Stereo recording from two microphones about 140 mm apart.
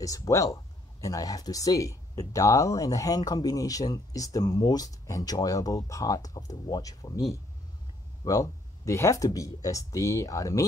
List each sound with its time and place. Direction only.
0.0 s speech: 25° left (ahead or behind)